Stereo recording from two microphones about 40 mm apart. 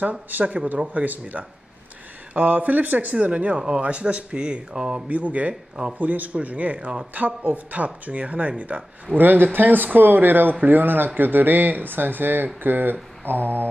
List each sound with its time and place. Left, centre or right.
0.0 s speech: right
3.5 s speech: right
5.5 s speech: centre
5.9 s speech: right
9.1 s speech: right